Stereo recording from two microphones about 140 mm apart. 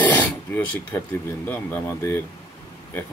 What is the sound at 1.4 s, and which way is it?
Speech, 15° left (ahead or behind).